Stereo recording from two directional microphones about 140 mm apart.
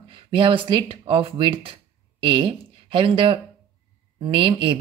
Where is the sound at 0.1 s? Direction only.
35° right (ahead or behind).